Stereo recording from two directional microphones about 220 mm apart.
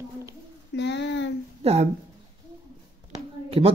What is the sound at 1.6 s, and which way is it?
Speech, 30° right (ahead or behind).